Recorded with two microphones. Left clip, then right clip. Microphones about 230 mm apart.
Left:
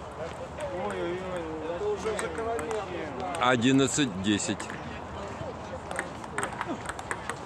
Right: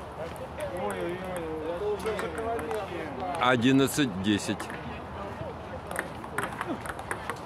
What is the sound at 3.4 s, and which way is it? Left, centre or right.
Speech, centre.